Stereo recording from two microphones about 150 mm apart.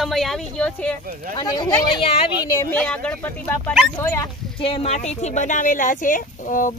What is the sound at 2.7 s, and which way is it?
Speech, 5° left (ahead or behind).